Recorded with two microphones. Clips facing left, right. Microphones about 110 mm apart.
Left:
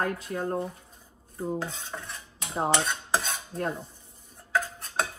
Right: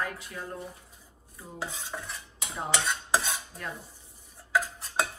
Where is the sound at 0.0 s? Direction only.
45° left (ahead or behind).